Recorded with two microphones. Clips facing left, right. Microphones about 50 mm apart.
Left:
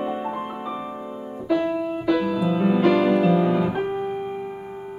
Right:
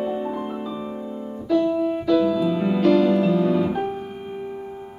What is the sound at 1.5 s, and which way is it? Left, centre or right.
Music, centre.